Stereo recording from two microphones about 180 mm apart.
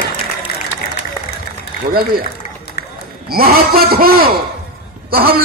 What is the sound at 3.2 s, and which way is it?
A man's voice, 55° right (ahead or behind).